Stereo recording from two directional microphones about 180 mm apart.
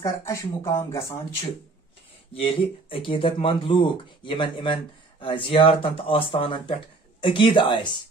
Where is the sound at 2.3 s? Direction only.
30° left (ahead or behind).